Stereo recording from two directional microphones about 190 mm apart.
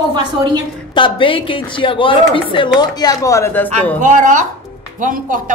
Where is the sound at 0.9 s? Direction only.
25° left (ahead or behind); by 4.0 s 10° left (ahead or behind).